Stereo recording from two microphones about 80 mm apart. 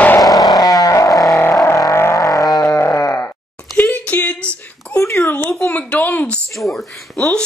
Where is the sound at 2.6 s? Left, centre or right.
Left.